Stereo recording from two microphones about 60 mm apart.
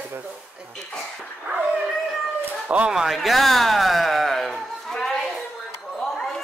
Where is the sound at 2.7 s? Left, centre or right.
Right.